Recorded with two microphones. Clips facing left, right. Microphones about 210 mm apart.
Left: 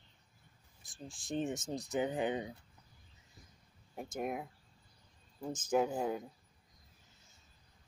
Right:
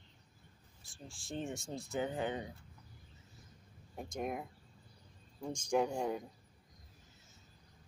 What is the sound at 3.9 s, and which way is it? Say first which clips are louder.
Speech: left 1 dB; 5° left (ahead or behind).